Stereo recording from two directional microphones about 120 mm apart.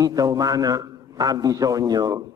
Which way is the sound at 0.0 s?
30° right (ahead or behind).